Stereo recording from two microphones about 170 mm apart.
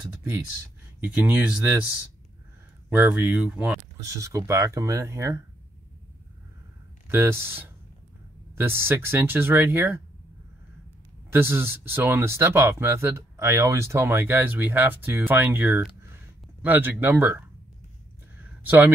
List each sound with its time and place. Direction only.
0.0 s speech: 15° right (ahead or behind)
2.9 s speech: 10° right (ahead or behind)
4.0 s speech: 20° right (ahead or behind)
7.1 s speech: 15° right (ahead or behind)
11.2 s speech: 15° right (ahead or behind)
18.4 s a sound: 10° right (ahead or behind)